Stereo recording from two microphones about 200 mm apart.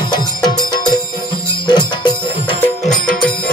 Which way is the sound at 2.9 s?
40° left (ahead or behind).